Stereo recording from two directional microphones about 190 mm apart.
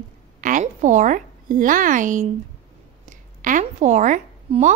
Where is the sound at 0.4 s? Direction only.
45° right (ahead or behind).